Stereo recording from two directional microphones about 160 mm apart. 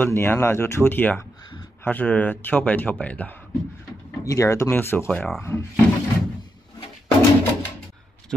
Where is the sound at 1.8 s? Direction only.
10° left (ahead or behind).